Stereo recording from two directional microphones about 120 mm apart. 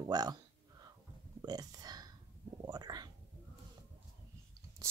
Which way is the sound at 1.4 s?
35° right (ahead or behind).